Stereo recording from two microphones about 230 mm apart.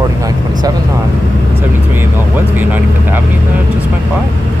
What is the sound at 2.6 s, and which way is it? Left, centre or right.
Speech, centre.